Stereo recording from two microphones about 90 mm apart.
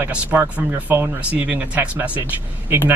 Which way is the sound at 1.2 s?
15° right (ahead or behind).